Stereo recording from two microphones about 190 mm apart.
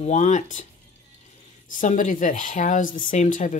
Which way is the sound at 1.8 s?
40° left (ahead or behind).